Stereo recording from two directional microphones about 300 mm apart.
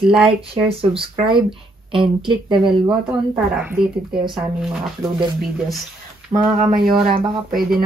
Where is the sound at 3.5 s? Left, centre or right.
Centre.